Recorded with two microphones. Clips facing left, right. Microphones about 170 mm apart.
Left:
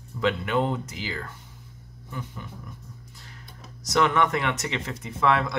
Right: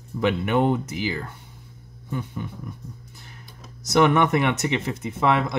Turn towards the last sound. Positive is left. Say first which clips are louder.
# right 2 dB
turn(degrees=-20)  # may be behind; listen again after turning